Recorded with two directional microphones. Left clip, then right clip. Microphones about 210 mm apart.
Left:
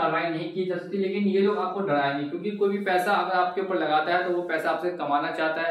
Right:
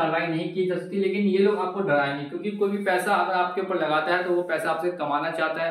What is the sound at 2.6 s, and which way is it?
A man's voice, 15° left (ahead or behind).